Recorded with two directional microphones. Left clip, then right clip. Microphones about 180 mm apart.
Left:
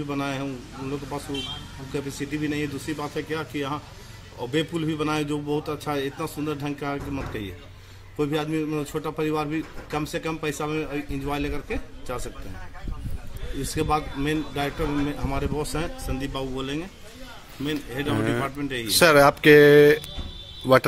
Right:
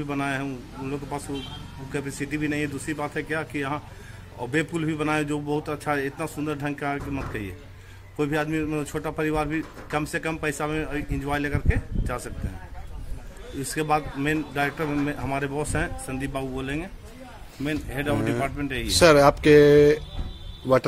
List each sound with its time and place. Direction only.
0.0 s speech: 5° right (ahead or behind)
13.7 s speech: 5° right (ahead or behind)
17.9 s speech: 15° right (ahead or behind)
18.9 s speech: centre (ahead or behind)